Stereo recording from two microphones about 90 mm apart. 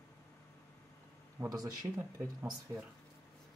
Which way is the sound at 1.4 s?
45° right (ahead or behind).